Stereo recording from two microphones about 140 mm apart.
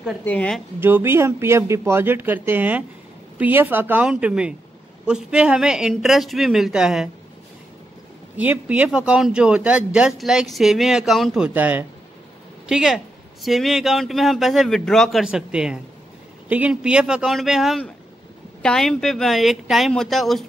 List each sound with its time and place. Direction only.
0.2 s a woman's voice: 10° left (ahead or behind)
0.7 s speech: 15° right (ahead or behind)
8.4 s speech: 10° right (ahead or behind)